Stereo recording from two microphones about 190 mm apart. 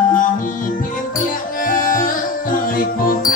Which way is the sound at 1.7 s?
45° left (ahead or behind).